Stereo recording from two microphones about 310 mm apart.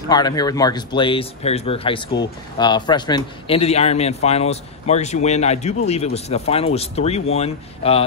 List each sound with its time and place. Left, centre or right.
0.1 s speech: centre